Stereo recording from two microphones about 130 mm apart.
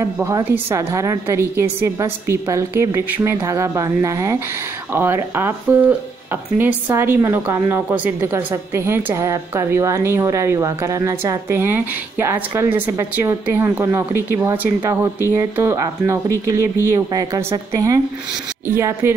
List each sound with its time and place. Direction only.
0.0 s a woman's voice: 20° right (ahead or behind)